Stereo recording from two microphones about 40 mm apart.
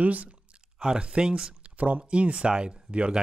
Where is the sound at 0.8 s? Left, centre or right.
Right.